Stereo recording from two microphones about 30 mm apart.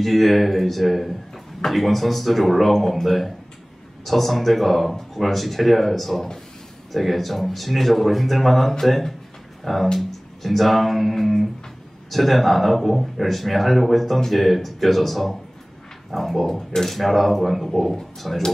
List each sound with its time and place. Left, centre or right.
0.0 s speech: centre